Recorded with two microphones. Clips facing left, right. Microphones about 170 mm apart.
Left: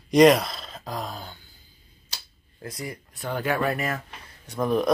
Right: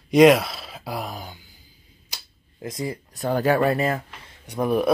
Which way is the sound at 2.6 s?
25° right (ahead or behind).